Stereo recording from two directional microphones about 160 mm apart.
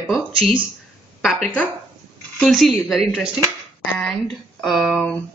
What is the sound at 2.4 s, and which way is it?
Speech, centre (ahead or behind).